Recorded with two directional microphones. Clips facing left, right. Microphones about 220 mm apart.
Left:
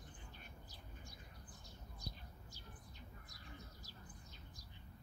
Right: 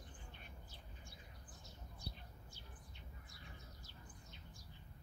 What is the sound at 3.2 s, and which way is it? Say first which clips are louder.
Bird: left 2 dB; 40° left (ahead or behind).